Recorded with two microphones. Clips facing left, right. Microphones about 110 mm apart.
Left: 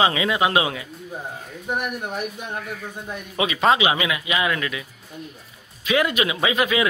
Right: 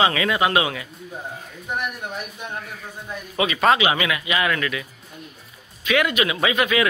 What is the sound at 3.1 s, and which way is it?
Speech, 20° left (ahead or behind).